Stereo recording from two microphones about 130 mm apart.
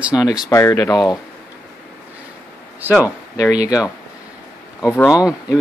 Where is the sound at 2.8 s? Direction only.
15° right (ahead or behind).